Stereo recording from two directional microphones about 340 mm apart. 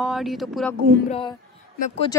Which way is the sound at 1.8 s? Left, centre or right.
Centre.